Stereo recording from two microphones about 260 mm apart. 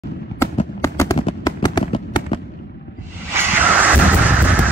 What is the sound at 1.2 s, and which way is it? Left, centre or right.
Fireworks, centre.